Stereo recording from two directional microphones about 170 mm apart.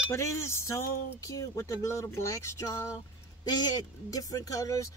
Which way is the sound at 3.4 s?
25° left (ahead or behind).